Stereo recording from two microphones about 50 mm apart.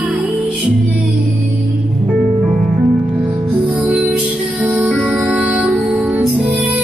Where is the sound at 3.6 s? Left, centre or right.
Right.